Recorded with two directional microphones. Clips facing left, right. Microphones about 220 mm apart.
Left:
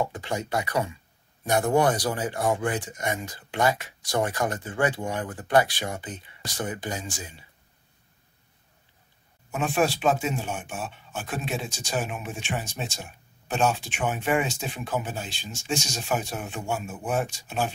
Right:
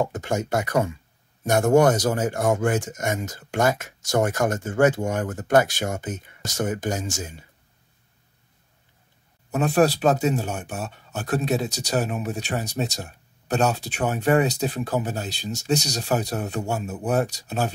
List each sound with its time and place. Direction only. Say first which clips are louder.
0.0 s speech: right 4 dB; 45° right (ahead or behind)
9.5 s speech: right 5 dB; 40° right (ahead or behind)